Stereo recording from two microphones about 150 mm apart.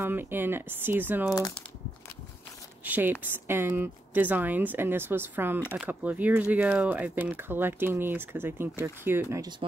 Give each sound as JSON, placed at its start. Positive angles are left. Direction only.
{"t": 0.0, "sound": "speech", "side_deg": -15}
{"t": 2.8, "sound": "speech", "side_deg": -10}
{"t": 9.6, "sound": "speech", "side_deg": -35}